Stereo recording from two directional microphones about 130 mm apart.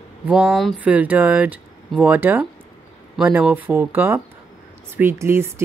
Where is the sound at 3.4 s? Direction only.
15° right (ahead or behind).